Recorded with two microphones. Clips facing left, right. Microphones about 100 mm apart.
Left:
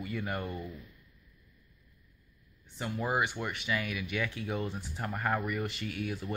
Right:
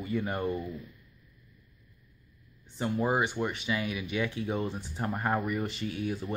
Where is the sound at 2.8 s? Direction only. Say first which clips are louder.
Right 4 dB; 30° right (ahead or behind).